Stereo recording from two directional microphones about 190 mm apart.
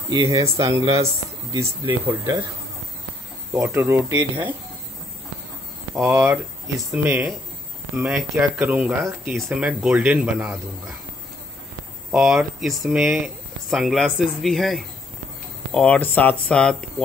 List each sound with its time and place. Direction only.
0.1 s speech: 20° right (ahead or behind)
3.5 s speech: 15° right (ahead or behind)
5.9 s speech: 10° right (ahead or behind)
6.8 s speech: centre (ahead or behind)
12.1 s speech: 5° right (ahead or behind)